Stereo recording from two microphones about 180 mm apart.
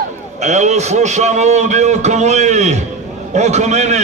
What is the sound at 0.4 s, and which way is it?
A man's voice, 40° right (ahead or behind).